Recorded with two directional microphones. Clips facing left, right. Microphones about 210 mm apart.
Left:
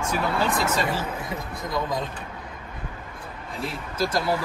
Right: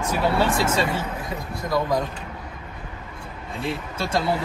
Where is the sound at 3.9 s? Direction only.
25° right (ahead or behind).